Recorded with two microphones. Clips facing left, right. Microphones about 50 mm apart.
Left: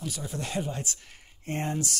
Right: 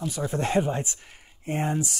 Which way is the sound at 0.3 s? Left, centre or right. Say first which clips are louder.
Right 9 dB; right.